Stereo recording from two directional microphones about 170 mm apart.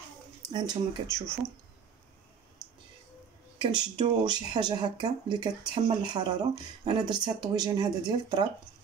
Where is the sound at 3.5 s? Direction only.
25° right (ahead or behind).